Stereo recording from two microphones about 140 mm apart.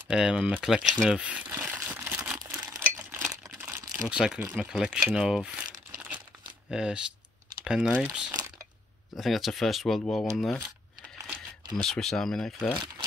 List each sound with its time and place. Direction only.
0.1 s speech: 5° right (ahead or behind)
3.3 s crumpling: 20° right (ahead or behind)
4.1 s speech: 5° right (ahead or behind)
5.9 s crumpling: 5° right (ahead or behind)
6.7 s speech: 5° right (ahead or behind)
11.7 s speech: 5° left (ahead or behind)